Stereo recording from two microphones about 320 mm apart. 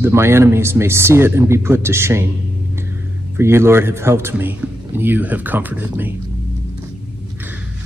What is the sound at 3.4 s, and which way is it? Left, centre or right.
A man's voice, centre.